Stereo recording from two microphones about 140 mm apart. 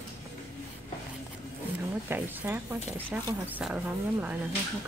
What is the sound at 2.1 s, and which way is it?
Speech, 15° right (ahead or behind).